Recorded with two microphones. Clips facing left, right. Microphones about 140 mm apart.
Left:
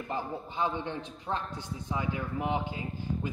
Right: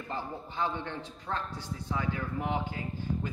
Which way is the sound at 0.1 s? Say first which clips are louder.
Left 2 dB; 15° left (ahead or behind).